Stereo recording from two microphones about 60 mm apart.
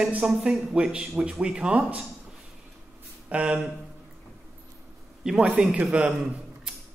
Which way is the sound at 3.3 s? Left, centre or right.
Right.